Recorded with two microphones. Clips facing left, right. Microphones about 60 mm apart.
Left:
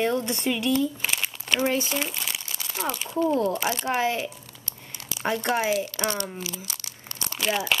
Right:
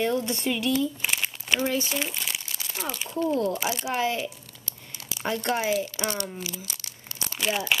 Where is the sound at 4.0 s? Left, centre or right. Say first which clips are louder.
Left 1 dB; centre.